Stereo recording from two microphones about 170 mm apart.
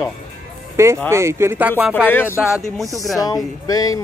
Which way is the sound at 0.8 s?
15° right (ahead or behind).